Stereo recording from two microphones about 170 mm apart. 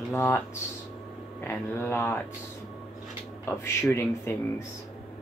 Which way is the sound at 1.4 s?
15° left (ahead or behind).